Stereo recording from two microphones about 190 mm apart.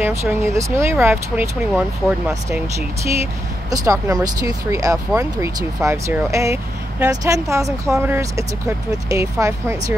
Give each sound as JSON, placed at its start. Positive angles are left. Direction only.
{"t": 0.0, "sound": "speech", "side_deg": -15}
{"t": 3.7, "sound": "speech", "side_deg": -20}